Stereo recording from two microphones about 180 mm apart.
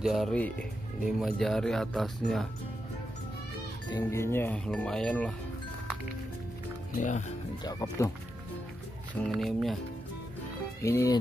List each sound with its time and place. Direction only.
0.0 s speech: centre (ahead or behind)
4.0 s speech: 15° left (ahead or behind)
6.9 s speech: 45° left (ahead or behind)
9.3 s speech: centre (ahead or behind)
10.8 s speech: 15° left (ahead or behind)